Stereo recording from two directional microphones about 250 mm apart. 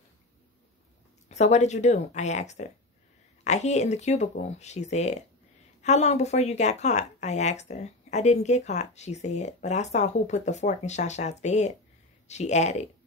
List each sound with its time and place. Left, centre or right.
1.3 s speech: left